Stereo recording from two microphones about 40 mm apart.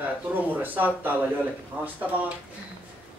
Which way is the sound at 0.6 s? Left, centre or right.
Right.